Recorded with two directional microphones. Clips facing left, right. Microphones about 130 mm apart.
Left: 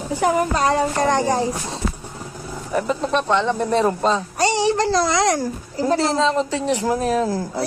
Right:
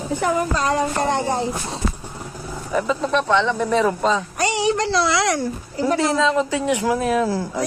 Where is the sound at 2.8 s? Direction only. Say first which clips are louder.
Even; 45° left (ahead or behind).